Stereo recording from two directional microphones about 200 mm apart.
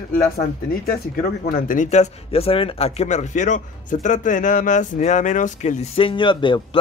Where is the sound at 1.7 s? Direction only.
35° left (ahead or behind).